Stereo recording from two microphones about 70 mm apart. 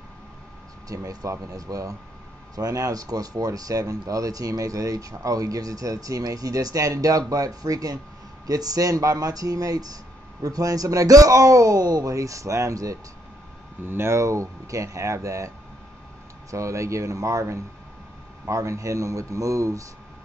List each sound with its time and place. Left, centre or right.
0.8 s speech: right
13.8 s speech: right